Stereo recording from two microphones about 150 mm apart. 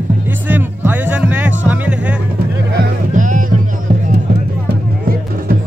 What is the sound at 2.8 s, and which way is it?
Music, 60° right (ahead or behind).